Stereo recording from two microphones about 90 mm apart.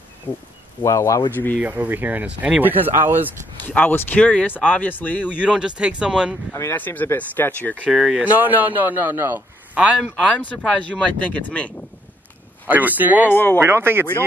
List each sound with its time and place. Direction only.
0.3 s speech: 20° left (ahead or behind)
0.8 s speech: 35° left (ahead or behind)
1.6 s speech: 20° right (ahead or behind)
3.6 s speech: 20° left (ahead or behind)
5.4 s speech: 10° right (ahead or behind)
6.5 s speech: 25° left (ahead or behind)
7.9 s speech: 5° right (ahead or behind)
8.2 s speech: 20° right (ahead or behind)
9.8 s speech: 10° right (ahead or behind)
10.1 s speech: 15° left (ahead or behind)
12.6 s speech: 20° right (ahead or behind)
13.3 s speech: 25° left (ahead or behind)
13.6 s speech: 25° right (ahead or behind)